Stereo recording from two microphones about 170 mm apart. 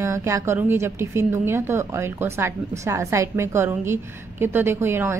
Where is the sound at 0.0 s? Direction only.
15° right (ahead or behind).